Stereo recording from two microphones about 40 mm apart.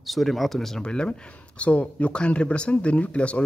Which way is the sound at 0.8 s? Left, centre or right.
Left.